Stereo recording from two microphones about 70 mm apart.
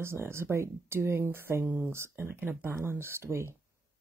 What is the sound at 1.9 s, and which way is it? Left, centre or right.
Speech, right.